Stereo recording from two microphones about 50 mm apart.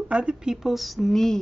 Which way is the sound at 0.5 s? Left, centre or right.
Centre.